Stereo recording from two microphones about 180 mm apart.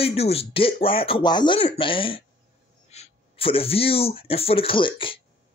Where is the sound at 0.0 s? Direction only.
35° left (ahead or behind).